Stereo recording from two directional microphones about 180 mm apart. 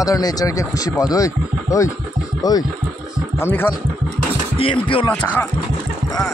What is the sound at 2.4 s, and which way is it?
Speech, 20° left (ahead or behind).